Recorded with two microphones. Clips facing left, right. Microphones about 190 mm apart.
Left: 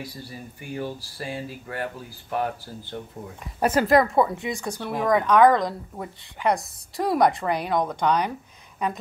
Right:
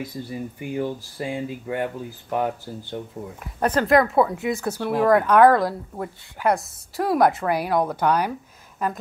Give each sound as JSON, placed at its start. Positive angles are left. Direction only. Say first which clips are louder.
{"t": 0.0, "sound": "speech", "louder": "right 7 dB", "side_deg": -20}
{"t": 3.5, "sound": "speech", "louder": "right 1 dB", "side_deg": 10}